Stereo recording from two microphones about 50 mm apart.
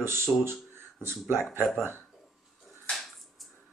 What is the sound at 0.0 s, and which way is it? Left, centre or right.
Speech, right.